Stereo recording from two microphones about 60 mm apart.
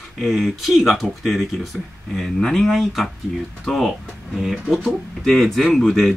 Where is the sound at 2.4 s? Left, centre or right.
Centre.